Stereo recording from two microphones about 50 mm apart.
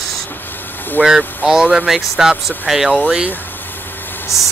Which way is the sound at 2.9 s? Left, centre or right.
Right.